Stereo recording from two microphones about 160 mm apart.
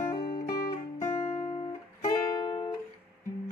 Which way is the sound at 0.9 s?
15° left (ahead or behind).